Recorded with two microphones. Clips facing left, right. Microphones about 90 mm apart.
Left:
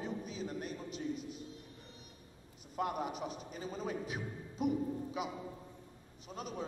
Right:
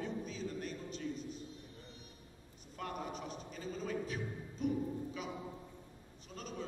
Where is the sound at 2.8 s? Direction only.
15° left (ahead or behind).